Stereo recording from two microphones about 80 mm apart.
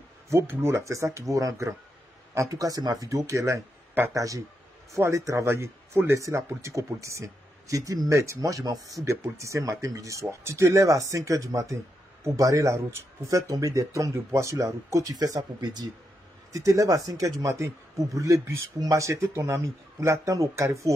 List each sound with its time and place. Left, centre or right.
0.3 s speech: right
6.1 s speech: right